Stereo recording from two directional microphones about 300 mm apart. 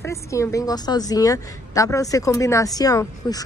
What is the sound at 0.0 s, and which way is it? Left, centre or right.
A woman's voice, centre.